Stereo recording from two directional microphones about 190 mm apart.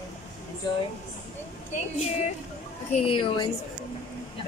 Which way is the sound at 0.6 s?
20° left (ahead or behind).